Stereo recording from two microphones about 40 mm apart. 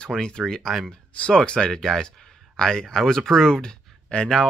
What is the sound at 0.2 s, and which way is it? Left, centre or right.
Speech, centre.